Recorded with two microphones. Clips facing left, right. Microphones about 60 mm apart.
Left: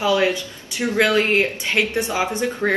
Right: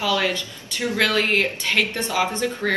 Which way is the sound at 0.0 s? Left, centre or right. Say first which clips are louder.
Left 4 dB; left.